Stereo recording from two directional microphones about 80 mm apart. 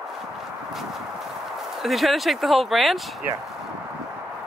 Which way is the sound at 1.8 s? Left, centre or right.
Centre.